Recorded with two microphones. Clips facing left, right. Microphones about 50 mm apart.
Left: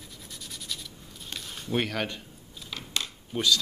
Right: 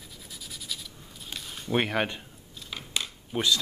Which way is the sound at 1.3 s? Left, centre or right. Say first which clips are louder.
Right 1 dB; centre.